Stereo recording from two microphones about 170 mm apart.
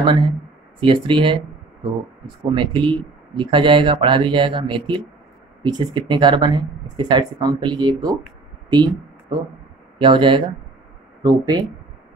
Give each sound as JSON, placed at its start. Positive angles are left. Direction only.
{"t": 0.0, "sound": "speech", "side_deg": -25}
{"t": 8.6, "sound": "a sound", "side_deg": -25}
{"t": 9.9, "sound": "speech", "side_deg": -30}